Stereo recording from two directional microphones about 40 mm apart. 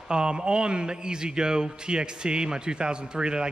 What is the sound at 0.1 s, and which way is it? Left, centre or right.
A man's voice, right.